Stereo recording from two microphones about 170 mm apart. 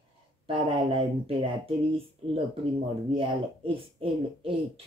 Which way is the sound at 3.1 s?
30° right (ahead or behind).